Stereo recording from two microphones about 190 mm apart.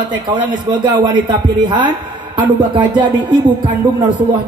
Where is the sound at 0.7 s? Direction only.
25° right (ahead or behind).